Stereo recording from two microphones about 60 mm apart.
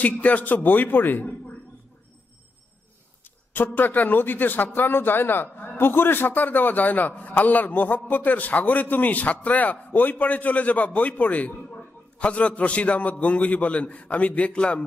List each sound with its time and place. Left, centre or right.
0.0 s a man's voice: left
3.5 s a man's voice: left